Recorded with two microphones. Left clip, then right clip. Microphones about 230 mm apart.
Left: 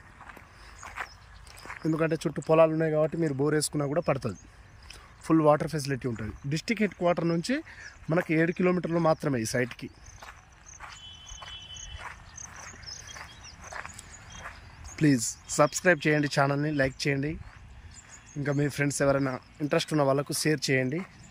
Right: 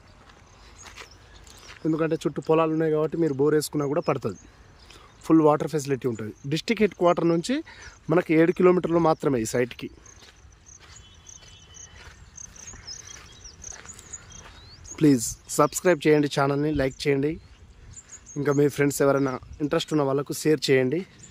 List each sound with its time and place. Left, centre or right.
1.9 s speech: centre
12.4 s a sound: right
15.0 s speech: centre
18.4 s speech: centre